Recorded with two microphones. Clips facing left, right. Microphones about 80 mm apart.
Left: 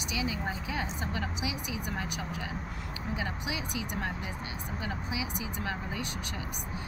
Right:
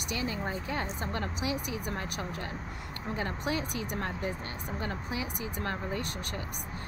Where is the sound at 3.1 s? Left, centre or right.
Right.